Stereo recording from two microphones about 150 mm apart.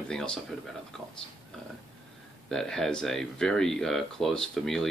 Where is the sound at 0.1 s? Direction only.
5° left (ahead or behind).